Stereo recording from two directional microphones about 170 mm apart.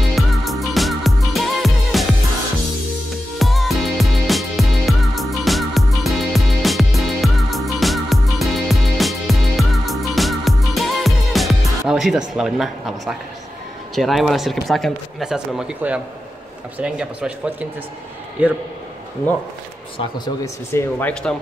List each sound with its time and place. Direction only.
0.1 s music: centre (ahead or behind)
3.3 s music: centre (ahead or behind)
12.4 s a man's voice: centre (ahead or behind)
20.4 s speech: 15° left (ahead or behind)
21.1 s speech: 5° left (ahead or behind)